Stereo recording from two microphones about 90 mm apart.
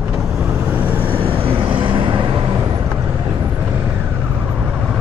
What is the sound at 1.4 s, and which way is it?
Vehicle, 90° right.